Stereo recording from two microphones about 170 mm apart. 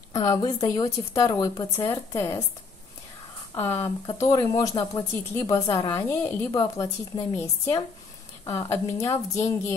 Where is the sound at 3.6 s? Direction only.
15° left (ahead or behind).